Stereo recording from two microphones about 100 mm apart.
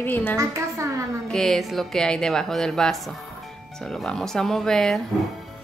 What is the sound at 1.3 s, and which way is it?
Speech, 5° left (ahead or behind).